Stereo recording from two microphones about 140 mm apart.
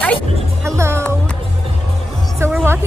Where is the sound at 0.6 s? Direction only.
20° right (ahead or behind).